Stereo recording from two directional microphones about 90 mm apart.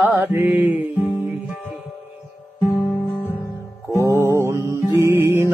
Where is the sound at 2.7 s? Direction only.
20° left (ahead or behind).